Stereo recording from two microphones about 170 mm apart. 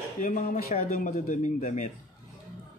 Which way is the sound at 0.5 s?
55° left (ahead or behind).